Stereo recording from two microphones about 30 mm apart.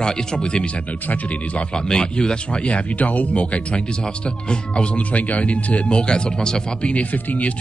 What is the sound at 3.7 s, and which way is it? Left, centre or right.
Speech, left.